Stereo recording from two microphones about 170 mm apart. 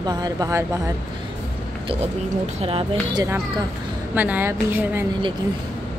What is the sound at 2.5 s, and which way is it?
Speech, 35° right (ahead or behind).